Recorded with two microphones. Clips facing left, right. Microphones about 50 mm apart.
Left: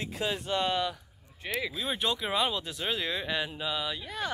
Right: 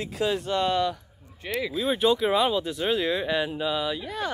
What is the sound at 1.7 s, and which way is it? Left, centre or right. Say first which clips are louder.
Speech: right 13 dB; centre.